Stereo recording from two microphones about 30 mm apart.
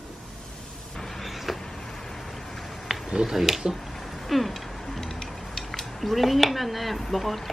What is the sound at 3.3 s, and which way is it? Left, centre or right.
Speech, centre.